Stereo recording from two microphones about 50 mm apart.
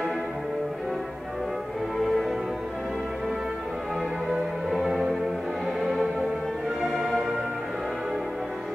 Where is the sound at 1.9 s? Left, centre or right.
Centre.